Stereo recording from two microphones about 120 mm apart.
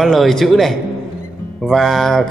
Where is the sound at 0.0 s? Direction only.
Centre (ahead or behind).